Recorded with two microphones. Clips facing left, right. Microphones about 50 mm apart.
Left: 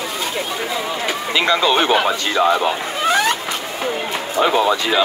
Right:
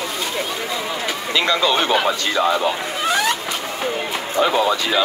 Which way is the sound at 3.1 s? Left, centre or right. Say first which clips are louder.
Left 3 dB; left.